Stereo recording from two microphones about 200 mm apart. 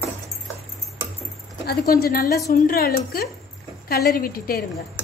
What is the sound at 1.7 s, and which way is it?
A woman's voice, 50° left (ahead or behind).